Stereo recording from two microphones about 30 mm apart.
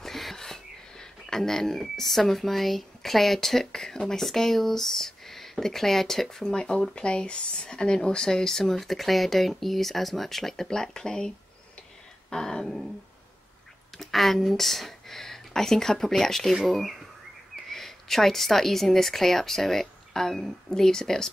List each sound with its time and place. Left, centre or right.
0.0 s a sound: centre
2.0 s speech: centre
6.4 s speech: left
7.0 s speech: left; by 10.7 s centre
10.7 s speech: left
13.9 s a woman's voice: centre